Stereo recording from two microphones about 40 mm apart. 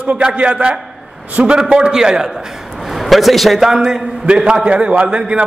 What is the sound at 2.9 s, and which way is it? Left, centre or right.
Speech, centre.